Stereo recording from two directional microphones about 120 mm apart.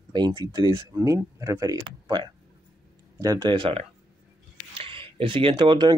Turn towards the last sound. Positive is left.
turn(degrees=-40)  # may be behind; listen again after turning